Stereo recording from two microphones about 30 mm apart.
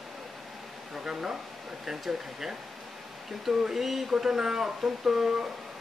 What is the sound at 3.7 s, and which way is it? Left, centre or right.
Speech, centre.